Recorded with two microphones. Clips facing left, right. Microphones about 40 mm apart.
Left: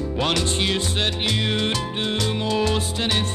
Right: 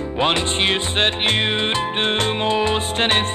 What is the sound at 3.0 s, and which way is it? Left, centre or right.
Music, right.